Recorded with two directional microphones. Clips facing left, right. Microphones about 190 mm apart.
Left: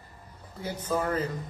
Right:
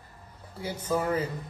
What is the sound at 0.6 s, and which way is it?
Speech, 10° right (ahead or behind).